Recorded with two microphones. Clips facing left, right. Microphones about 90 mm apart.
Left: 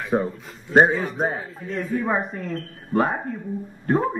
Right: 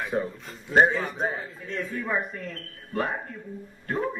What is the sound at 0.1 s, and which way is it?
Speech, 40° left (ahead or behind).